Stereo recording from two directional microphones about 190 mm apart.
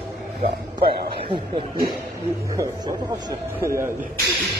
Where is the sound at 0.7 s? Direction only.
25° right (ahead or behind).